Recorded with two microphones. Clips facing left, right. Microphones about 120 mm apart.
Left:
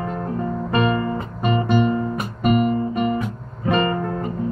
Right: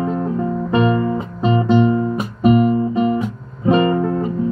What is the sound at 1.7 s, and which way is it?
Guitar, 20° right (ahead or behind).